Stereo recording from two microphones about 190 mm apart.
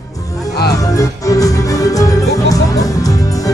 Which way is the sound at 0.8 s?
20° left (ahead or behind).